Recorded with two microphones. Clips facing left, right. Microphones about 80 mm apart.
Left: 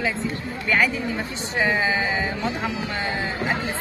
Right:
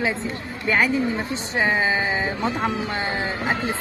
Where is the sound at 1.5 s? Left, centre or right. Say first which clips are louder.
Right 1 dB; right.